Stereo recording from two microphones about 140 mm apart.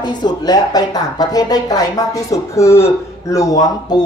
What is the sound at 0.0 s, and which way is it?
Speech, 30° left (ahead or behind).